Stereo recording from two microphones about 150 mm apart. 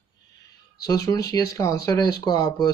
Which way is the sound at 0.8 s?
25° left (ahead or behind).